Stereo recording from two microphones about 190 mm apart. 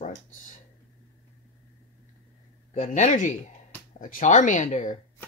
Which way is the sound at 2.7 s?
40° left (ahead or behind).